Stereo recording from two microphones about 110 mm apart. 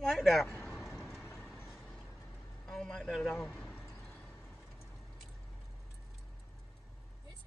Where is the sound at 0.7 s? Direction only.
5° right (ahead or behind).